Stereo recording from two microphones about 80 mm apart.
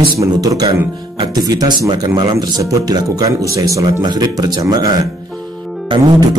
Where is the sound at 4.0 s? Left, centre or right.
Right.